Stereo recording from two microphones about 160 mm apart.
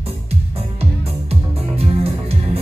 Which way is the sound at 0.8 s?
40° right (ahead or behind).